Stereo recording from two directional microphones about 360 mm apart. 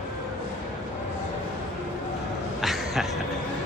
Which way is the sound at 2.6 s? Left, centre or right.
Centre.